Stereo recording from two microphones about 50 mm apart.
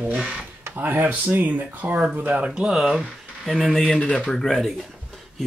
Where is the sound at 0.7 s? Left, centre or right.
Right.